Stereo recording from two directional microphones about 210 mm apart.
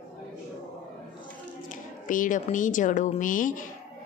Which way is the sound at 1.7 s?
40° left (ahead or behind).